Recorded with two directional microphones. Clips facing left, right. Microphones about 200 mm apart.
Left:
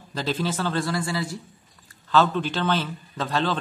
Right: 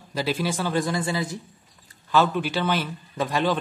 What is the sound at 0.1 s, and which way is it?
A man's voice, 10° right (ahead or behind).